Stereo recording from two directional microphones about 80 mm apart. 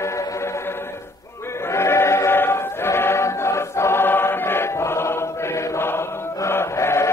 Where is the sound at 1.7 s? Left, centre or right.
Left.